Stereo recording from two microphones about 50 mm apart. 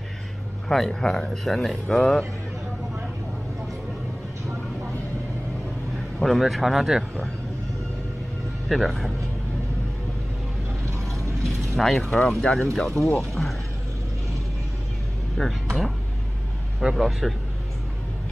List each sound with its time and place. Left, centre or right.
0.7 s speech: centre
6.2 s speech: centre
8.6 s speech: centre
11.7 s speech: centre
12.1 s speech: centre
15.4 s speech: centre
16.9 s speech: centre